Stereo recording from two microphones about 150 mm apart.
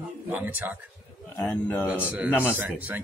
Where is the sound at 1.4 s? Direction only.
5° left (ahead or behind).